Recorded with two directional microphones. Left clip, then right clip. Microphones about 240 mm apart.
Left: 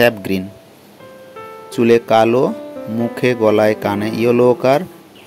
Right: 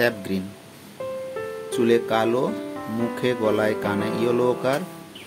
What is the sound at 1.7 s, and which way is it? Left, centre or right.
Speech, left.